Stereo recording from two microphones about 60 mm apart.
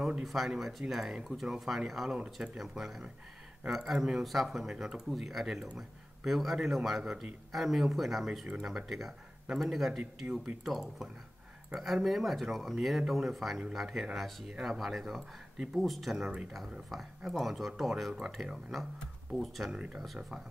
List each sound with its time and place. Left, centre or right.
0.0 s speech: centre
19.7 s speech: centre